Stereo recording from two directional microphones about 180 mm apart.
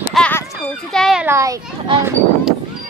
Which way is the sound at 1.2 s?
15° right (ahead or behind).